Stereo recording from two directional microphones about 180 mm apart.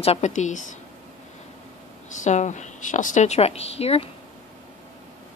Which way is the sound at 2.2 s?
40° left (ahead or behind).